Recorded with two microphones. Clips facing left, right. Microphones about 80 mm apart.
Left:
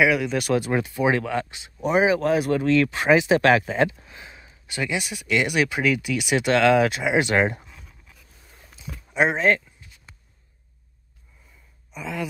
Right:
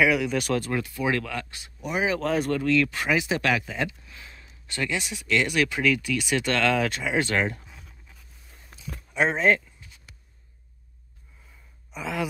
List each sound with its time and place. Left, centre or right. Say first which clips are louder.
0.0 s speech: left 2 dB; centre
0.7 s speech: left 5 dB; left
1.8 s speech: left 8 dB; left
2.0 s speech: left 5 dB; centre
2.5 s speech: left 3 dB; left
4.1 s a sound: left 3 dB; left
5.2 s speech: left 2 dB; centre
9.3 s speech: right 1 dB; centre
11.9 s speech: right 1 dB; centre